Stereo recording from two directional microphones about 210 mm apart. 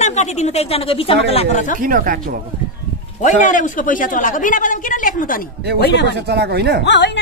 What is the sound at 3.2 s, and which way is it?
A woman's voice, 35° left (ahead or behind).